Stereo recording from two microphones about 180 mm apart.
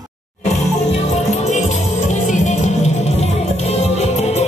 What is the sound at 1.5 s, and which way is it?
Music, 40° left (ahead or behind).